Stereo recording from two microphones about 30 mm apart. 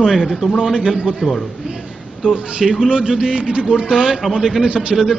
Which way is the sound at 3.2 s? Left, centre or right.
Right.